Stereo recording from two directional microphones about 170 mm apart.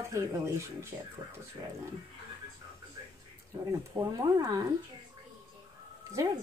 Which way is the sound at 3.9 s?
20° right (ahead or behind).